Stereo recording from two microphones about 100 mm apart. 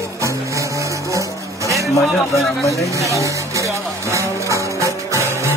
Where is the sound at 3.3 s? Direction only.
30° right (ahead or behind).